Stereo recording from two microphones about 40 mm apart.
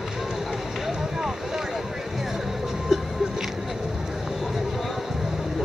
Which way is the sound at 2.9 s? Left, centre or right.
Centre.